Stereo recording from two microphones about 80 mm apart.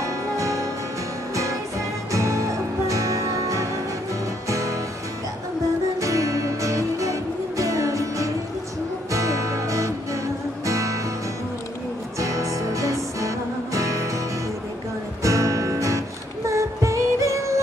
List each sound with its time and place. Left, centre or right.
0.0 s music: right
5.9 s music: right
12.2 s music: right
15.2 s music: right